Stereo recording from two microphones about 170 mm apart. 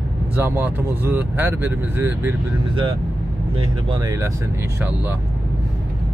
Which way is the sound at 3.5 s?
25° right (ahead or behind).